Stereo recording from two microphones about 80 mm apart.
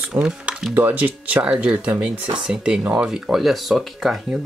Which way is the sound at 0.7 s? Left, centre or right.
Right.